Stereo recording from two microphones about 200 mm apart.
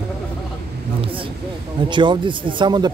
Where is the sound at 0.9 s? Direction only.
25° right (ahead or behind).